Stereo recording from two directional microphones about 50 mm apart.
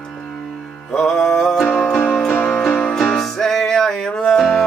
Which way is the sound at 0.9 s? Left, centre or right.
Centre.